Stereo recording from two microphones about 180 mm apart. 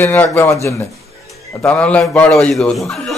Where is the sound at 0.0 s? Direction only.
10° left (ahead or behind).